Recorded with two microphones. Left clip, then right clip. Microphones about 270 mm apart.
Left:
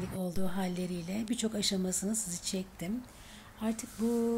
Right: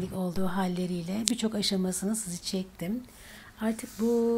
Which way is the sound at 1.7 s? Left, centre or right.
Left.